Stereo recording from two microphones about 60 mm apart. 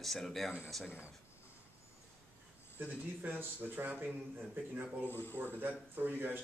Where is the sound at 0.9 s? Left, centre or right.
Right.